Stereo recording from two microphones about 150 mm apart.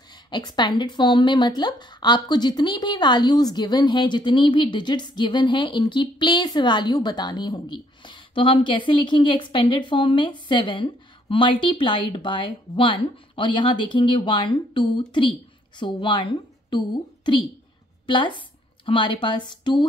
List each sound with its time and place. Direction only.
0.1 s a woman's voice: 30° left (ahead or behind)